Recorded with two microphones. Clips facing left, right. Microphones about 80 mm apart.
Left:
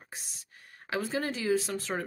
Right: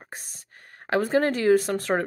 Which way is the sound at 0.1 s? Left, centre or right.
Right.